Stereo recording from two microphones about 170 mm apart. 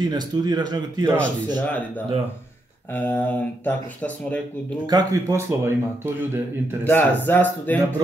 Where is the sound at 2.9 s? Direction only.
10° left (ahead or behind).